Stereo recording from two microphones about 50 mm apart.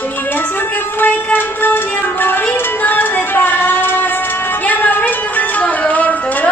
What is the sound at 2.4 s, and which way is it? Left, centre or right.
Music, left.